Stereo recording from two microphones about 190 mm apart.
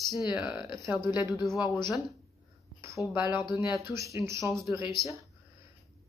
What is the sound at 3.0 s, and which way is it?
Speech, 5° right (ahead or behind).